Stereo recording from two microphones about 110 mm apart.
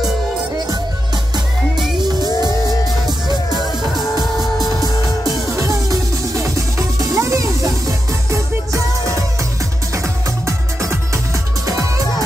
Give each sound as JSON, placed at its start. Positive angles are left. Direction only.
{"t": 2.0, "sound": "music", "side_deg": -40}
{"t": 4.2, "sound": "music", "side_deg": 0}
{"t": 5.5, "sound": "music", "side_deg": -30}
{"t": 10.4, "sound": "music", "side_deg": -25}